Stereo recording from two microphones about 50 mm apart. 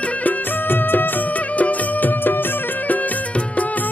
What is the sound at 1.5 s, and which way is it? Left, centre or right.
Music, left.